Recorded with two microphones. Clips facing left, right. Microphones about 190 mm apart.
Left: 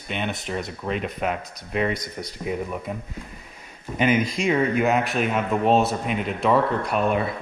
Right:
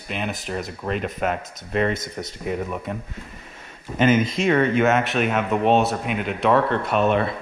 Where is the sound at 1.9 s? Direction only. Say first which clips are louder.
Right 2 dB; 25° right (ahead or behind).